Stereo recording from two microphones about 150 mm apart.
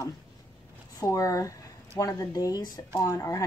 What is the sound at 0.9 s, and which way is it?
Speech, 25° left (ahead or behind).